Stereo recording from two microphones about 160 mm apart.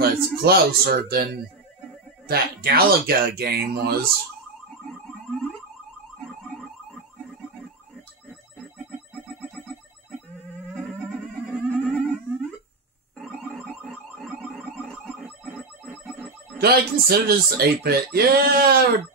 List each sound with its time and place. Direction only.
0.0 s speech: 85° right
10.7 s theremin: 5° left (ahead or behind)
13.2 s a sound: 5° left (ahead or behind)
16.5 s speech: 80° right